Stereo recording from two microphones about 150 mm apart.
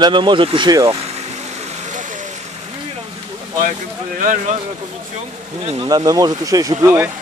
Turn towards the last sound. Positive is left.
turn(degrees=-15)  # may be behind; listen again after turning